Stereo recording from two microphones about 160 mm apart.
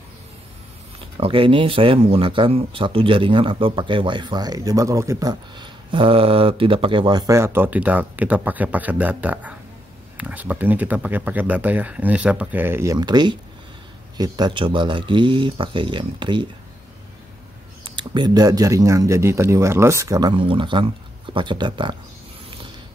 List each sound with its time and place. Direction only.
1.1 s speech: 35° right (ahead or behind); by 12.9 s 15° right (ahead or behind)
12.9 s speech: 25° right (ahead or behind)
17.8 s speech: 30° right (ahead or behind)